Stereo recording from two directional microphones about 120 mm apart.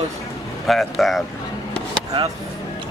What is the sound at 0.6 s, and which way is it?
Speech, centre (ahead or behind).